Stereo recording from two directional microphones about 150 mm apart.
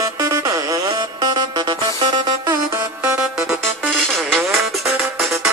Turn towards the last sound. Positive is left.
turn(degrees=5)  # may be behind; listen again after turning